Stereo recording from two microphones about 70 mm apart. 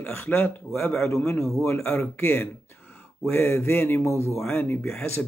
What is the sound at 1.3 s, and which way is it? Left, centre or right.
Speech, left.